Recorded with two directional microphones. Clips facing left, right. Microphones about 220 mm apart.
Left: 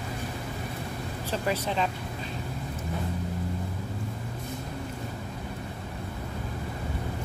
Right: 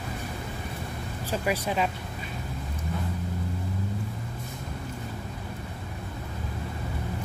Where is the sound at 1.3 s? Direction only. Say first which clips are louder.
Right 1 dB; 10° right (ahead or behind).